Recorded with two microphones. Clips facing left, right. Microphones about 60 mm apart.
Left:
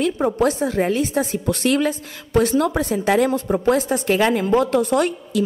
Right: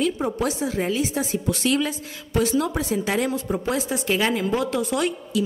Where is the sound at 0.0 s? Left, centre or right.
Left.